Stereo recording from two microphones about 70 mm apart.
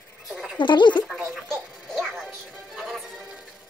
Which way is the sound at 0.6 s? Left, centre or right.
Left.